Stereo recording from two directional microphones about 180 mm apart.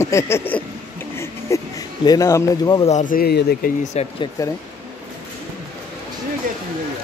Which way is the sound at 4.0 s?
35° left (ahead or behind).